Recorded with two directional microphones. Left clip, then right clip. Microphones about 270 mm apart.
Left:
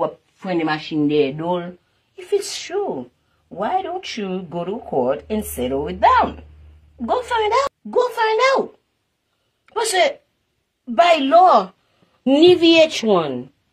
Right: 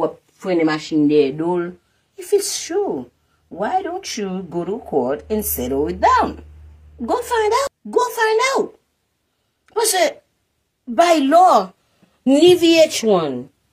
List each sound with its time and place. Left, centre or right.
0.0 s speech: left
9.7 s a woman's voice: left